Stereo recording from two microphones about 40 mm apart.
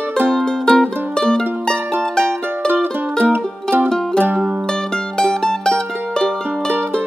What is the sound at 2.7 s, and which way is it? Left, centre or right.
Music, right.